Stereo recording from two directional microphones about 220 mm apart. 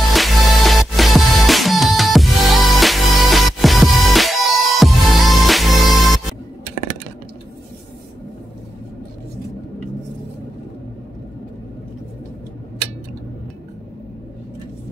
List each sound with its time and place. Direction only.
0.1 s music: centre (ahead or behind)